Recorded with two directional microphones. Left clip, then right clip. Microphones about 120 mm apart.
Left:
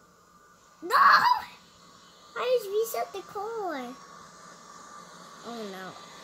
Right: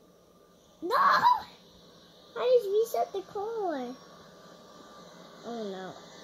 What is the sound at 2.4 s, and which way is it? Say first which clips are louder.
Speech: right 2 dB; 20° left (ahead or behind).